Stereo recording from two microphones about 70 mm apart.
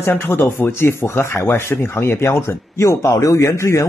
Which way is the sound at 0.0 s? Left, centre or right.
Left.